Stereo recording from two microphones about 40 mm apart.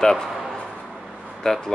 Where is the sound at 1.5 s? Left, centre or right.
Centre.